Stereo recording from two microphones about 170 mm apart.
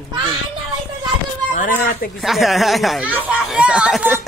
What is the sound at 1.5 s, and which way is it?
Speech, 55° left (ahead or behind).